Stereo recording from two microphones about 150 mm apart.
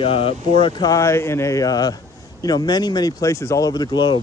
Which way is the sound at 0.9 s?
20° left (ahead or behind).